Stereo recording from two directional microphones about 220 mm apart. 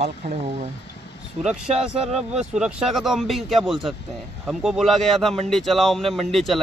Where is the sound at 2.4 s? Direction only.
5° right (ahead or behind).